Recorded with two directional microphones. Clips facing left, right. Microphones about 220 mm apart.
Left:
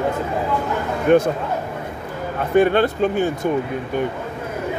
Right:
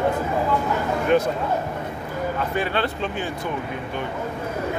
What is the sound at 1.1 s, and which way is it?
Speech, 50° left (ahead or behind).